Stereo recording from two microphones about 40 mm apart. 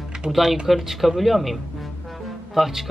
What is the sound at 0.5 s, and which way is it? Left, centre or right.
Speech, centre.